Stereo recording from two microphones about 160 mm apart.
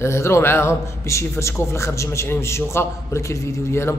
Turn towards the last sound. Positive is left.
turn(degrees=15)  # may be behind; listen again after turning